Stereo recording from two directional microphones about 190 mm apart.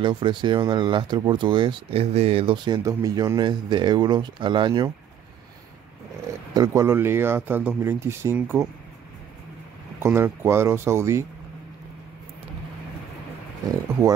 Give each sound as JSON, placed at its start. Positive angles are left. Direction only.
{"t": 0.0, "sound": "speech", "side_deg": -25}
{"t": 6.5, "sound": "speech", "side_deg": -20}
{"t": 10.0, "sound": "speech", "side_deg": -10}